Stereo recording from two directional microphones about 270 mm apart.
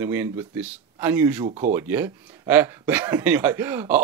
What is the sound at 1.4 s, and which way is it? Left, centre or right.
Speech, right.